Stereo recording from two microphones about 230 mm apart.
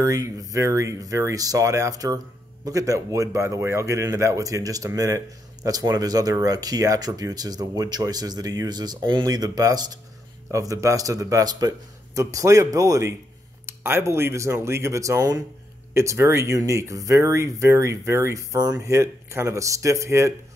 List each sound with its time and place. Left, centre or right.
0.0 s speech: centre